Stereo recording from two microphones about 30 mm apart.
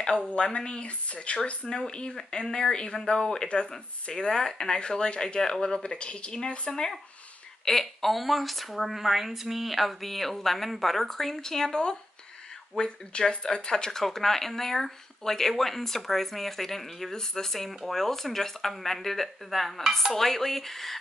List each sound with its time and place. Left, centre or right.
0.4 s speech: left
1.7 s speech: left
4.7 s speech: left
6.7 s speech: centre
7.8 s speech: centre; by 14.0 s left
14.0 s speech: centre